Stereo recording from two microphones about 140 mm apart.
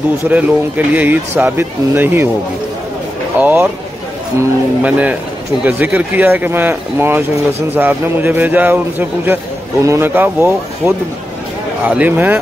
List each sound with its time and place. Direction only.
0.3 s speech: 10° right (ahead or behind)
3.3 s speech: 10° right (ahead or behind)